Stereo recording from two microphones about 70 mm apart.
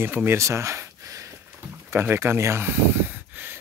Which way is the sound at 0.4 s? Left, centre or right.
Right.